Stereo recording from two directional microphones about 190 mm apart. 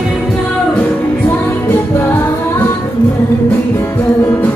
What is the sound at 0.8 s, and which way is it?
Music, 15° left (ahead or behind).